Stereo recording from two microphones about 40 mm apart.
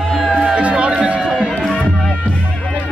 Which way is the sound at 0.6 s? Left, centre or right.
Right.